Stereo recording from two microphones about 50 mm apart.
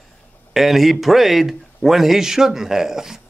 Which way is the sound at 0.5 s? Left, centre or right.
Centre.